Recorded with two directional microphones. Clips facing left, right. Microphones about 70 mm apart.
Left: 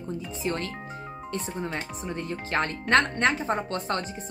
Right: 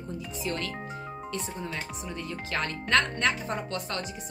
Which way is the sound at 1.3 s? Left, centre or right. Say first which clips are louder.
Left 5 dB; left.